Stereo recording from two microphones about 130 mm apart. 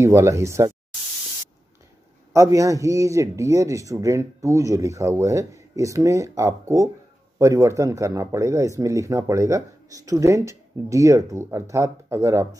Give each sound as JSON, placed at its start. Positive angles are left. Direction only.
{"t": 0.0, "sound": "speech", "side_deg": -20}
{"t": 2.3, "sound": "speech", "side_deg": -25}